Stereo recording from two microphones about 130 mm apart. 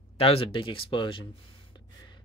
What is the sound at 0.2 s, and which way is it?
Speech, 45° left (ahead or behind).